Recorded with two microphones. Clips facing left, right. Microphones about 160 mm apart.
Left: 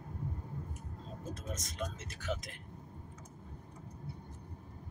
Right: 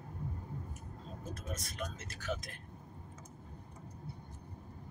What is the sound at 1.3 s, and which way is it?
Speech, 20° left (ahead or behind).